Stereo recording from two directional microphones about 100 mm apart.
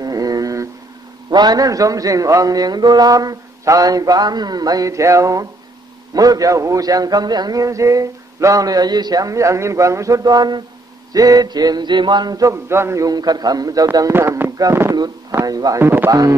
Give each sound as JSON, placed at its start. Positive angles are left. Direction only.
{"t": 0.0, "sound": "a sound", "side_deg": -40}
{"t": 1.3, "sound": "a man's voice", "side_deg": -40}
{"t": 14.1, "sound": "a man's voice", "side_deg": -25}
{"t": 15.8, "sound": "speech", "side_deg": -20}
{"t": 16.1, "sound": "a man's voice", "side_deg": -35}